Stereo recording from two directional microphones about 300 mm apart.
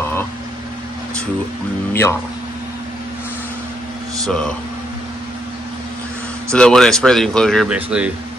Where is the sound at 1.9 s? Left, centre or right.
Centre.